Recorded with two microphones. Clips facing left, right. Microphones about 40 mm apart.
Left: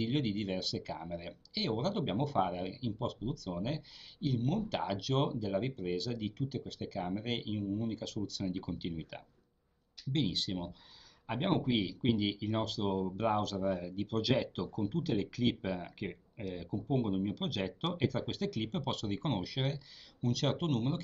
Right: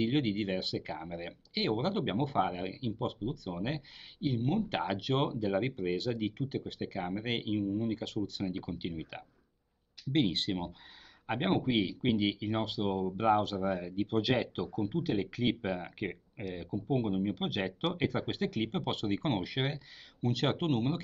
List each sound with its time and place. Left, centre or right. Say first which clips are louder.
0.0 s speech: right 3 dB; right
10.1 s speech: right 4 dB; right
11.2 s speech: right 2 dB; right